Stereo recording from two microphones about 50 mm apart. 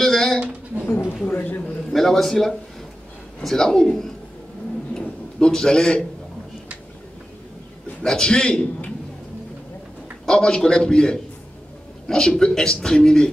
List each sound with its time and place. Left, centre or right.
0.0 s a sound: centre
0.8 s a sound: left
1.2 s speech: left
1.9 s a man's voice: centre
5.5 s a man's voice: centre
8.0 s a man's voice: centre
10.2 s a man's voice: centre